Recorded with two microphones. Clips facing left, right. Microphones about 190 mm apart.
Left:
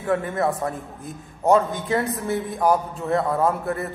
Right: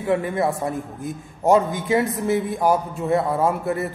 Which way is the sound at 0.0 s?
5° right (ahead or behind).